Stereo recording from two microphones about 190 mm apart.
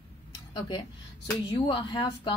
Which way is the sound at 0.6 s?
25° left (ahead or behind).